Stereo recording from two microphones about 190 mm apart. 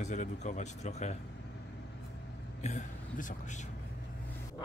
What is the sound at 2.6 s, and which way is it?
Speech, 40° left (ahead or behind).